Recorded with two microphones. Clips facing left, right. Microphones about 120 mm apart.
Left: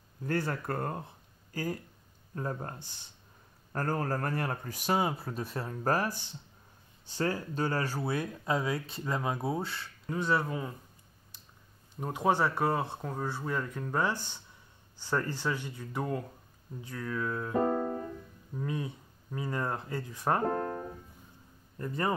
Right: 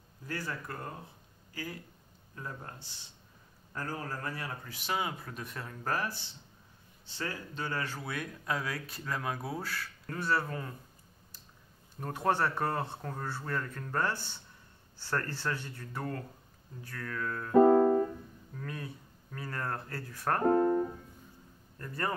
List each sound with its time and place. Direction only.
0.3 s speech: 55° left (ahead or behind)
1.5 s speech: 45° left (ahead or behind); by 10.7 s 15° left (ahead or behind)
12.0 s speech: 15° left (ahead or behind)
18.5 s speech: 20° left (ahead or behind)
21.7 s speech: 15° left (ahead or behind)